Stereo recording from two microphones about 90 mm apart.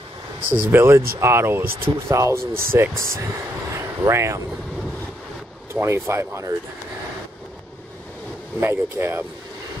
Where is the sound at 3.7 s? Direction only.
30° right (ahead or behind).